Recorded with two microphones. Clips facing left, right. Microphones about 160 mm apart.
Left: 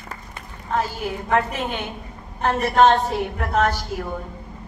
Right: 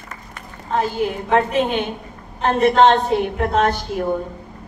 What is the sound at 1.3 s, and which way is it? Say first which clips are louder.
A woman's voice: right 4 dB; 25° right (ahead or behind).